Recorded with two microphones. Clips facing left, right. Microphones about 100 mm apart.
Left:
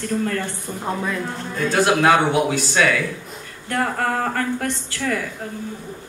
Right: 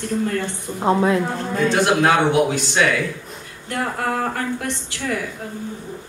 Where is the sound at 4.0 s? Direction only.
25° right (ahead or behind).